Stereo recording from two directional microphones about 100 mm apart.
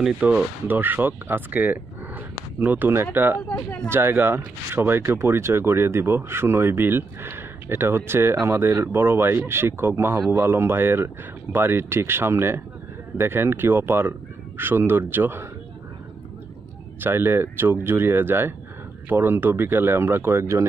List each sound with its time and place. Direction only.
0.2 s speech: 5° right (ahead or behind)
0.7 s speech: 20° right (ahead or behind)
3.4 s speech: 10° left (ahead or behind)
3.9 s speech: 20° right (ahead or behind)
17.0 s speech: 20° right (ahead or behind)